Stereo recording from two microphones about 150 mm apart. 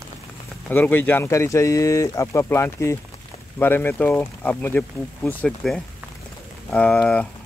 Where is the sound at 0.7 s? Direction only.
10° left (ahead or behind).